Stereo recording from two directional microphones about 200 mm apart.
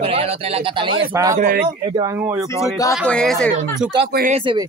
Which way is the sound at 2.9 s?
5° left (ahead or behind).